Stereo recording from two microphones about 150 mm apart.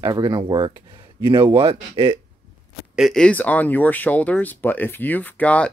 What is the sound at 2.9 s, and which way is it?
Speech, centre (ahead or behind).